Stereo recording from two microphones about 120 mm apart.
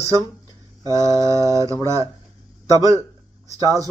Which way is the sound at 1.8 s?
25° right (ahead or behind).